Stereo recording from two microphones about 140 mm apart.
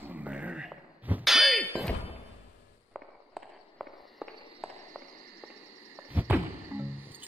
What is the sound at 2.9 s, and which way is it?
Walk, centre (ahead or behind).